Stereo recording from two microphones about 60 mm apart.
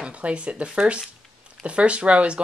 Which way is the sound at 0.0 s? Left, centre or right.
Centre.